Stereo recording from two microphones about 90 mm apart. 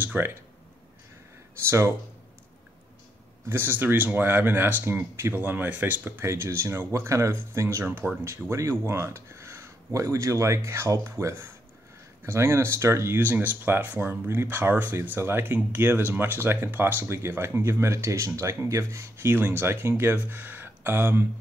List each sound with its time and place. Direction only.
0.0 s speech: 25° right (ahead or behind)
1.7 s speech: 30° right (ahead or behind)
3.4 s speech: 25° right (ahead or behind)